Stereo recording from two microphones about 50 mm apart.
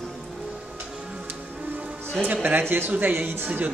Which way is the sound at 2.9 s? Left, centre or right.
Right.